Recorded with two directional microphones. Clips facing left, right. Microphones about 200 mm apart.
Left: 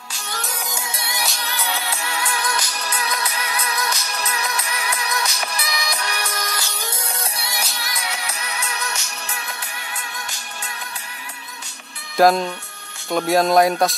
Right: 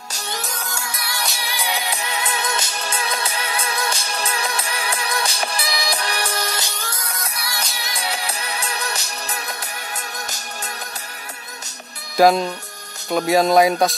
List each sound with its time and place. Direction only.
0.6 s music: 20° left (ahead or behind)
1.2 s music: 10° right (ahead or behind); by 6.6 s 30° right (ahead or behind)
6.8 s music: 25° left (ahead or behind)
7.8 s music: 30° right (ahead or behind)
12.2 s speech: centre (ahead or behind)